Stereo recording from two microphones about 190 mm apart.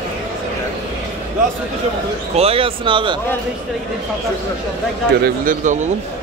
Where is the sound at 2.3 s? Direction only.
30° right (ahead or behind).